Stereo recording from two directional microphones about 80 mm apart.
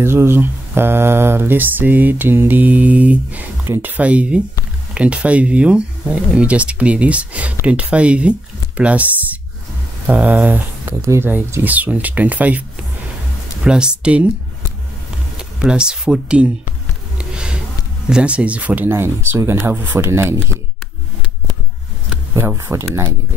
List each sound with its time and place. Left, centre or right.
0.0 s speech: right
11.0 s speech: right
11.6 s speech: right
13.7 s speech: centre
15.3 s speech: centre
17.2 s a sound: centre
18.1 s speech: centre
18.9 s speech: right
22.7 s speech: right